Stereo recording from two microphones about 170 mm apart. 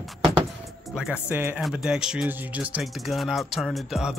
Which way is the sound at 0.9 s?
5° right (ahead or behind).